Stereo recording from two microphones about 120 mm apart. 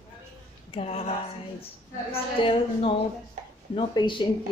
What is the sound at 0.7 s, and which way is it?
Speech, 60° left (ahead or behind).